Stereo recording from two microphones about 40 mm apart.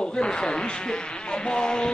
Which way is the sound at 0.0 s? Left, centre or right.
Left.